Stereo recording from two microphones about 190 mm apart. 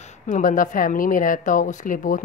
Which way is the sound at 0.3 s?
45° left (ahead or behind).